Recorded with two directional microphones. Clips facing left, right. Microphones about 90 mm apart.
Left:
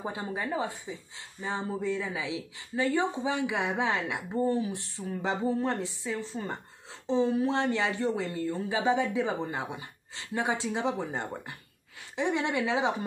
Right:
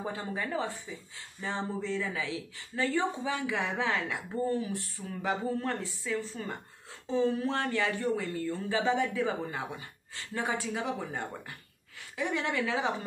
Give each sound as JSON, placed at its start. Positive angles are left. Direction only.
{"t": 0.0, "sound": "a woman's voice", "side_deg": 20}